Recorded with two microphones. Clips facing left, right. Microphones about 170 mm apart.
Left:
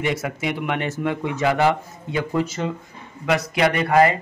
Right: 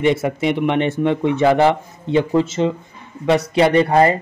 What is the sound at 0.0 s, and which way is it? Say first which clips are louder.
Speech: right 7 dB; 25° right (ahead or behind).